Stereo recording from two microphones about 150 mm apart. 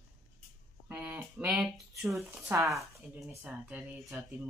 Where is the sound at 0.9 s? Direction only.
10° right (ahead or behind).